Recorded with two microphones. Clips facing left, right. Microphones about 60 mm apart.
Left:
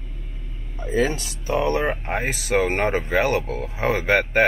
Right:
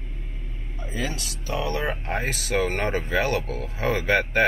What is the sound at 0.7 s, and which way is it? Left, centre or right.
Speech, left.